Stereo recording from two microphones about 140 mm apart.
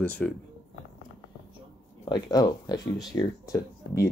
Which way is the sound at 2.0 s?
30° left (ahead or behind).